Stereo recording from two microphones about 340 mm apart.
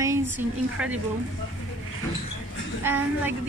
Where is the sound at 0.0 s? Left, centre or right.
Centre.